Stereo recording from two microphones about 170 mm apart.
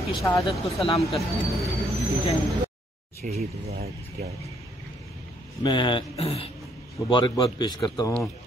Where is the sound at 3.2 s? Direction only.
50° right (ahead or behind).